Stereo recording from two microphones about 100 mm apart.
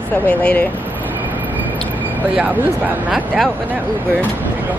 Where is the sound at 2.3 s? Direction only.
10° right (ahead or behind).